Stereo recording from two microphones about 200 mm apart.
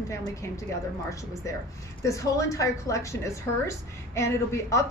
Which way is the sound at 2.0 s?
15° left (ahead or behind).